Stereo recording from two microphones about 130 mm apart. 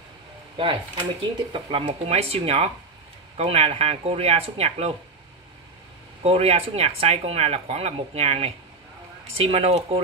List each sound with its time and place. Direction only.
0.6 s speech: 40° right (ahead or behind)
1.9 s speech: 55° right (ahead or behind)
6.2 s speech: 50° right (ahead or behind)